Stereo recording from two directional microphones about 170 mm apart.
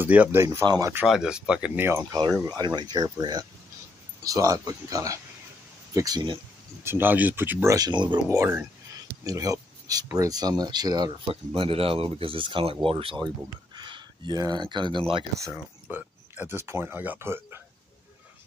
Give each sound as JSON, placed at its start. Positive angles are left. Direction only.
{"t": 0.0, "sound": "speech", "side_deg": -10}
{"t": 1.0, "sound": "speech", "side_deg": -5}
{"t": 2.4, "sound": "speech", "side_deg": -25}
{"t": 6.8, "sound": "speech", "side_deg": -15}
{"t": 8.4, "sound": "speech", "side_deg": -15}
{"t": 15.9, "sound": "speech", "side_deg": -10}